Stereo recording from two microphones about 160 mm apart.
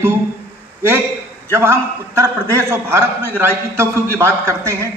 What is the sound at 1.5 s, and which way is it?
A man's voice, 15° right (ahead or behind).